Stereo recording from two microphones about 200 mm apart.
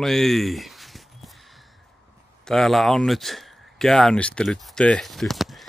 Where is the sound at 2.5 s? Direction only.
Centre (ahead or behind).